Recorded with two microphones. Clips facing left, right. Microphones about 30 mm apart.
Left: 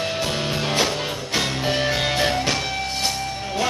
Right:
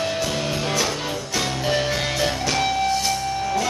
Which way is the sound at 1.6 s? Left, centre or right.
Centre.